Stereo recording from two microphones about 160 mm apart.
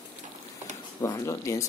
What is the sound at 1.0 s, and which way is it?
Speech, 20° left (ahead or behind).